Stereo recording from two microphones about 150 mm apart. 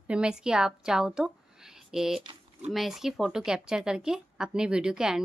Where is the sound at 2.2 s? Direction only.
40° right (ahead or behind).